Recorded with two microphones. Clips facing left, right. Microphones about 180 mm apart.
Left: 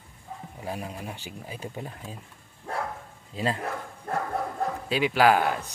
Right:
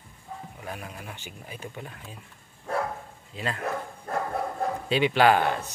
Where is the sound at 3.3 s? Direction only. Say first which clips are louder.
Left 4 dB; 30° left (ahead or behind).